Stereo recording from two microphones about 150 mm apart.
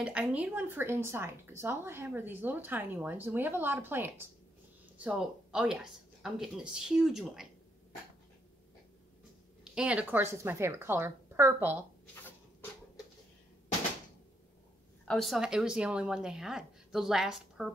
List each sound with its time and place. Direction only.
0.0 s a woman's voice: 10° right (ahead or behind)
9.8 s speech: 10° right (ahead or behind)
15.0 s a woman's voice: centre (ahead or behind)